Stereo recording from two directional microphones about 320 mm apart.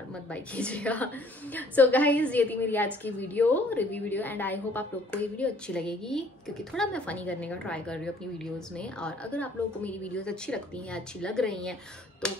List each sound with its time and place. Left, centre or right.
0.3 s a woman's voice: centre